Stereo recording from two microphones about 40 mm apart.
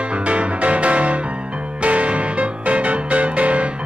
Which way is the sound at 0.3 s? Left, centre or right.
Right.